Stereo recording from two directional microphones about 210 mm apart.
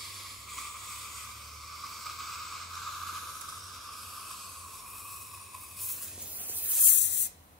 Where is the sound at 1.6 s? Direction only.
Centre (ahead or behind).